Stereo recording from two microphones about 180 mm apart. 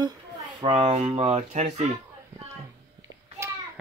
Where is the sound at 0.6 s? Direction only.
30° right (ahead or behind).